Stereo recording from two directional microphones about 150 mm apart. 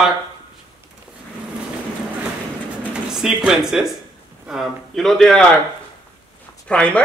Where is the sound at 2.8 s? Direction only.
5° right (ahead or behind).